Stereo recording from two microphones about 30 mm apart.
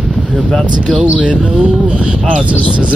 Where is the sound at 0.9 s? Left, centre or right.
Right.